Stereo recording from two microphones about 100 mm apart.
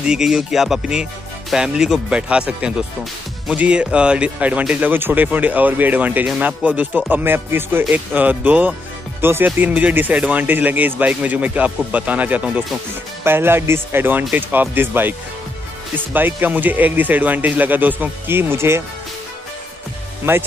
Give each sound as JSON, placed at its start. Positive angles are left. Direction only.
{"t": 0.0, "sound": "music", "side_deg": -5}
{"t": 1.5, "sound": "speech", "side_deg": -5}
{"t": 20.2, "sound": "speech", "side_deg": -25}